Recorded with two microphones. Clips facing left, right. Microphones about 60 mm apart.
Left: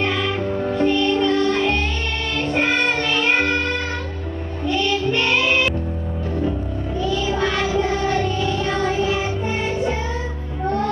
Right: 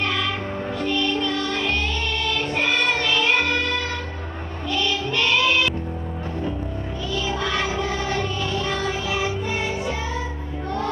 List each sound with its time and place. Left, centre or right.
0.0 s music: left
4.6 s child singing: left